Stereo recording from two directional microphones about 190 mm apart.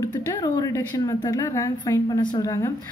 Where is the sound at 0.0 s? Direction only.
20° left (ahead or behind).